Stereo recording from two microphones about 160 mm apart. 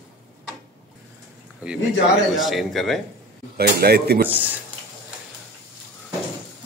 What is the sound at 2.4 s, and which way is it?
Speech, centre (ahead or behind).